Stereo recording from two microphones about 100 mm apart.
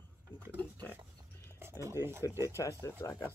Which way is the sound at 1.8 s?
25° right (ahead or behind).